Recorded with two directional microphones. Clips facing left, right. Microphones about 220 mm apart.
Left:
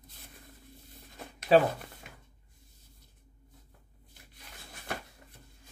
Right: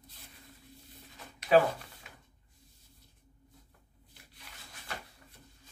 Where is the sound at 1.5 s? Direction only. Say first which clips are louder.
Left 1 dB; 30° left (ahead or behind).